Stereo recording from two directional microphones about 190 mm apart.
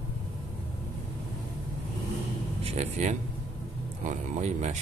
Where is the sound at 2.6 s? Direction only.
35° right (ahead or behind).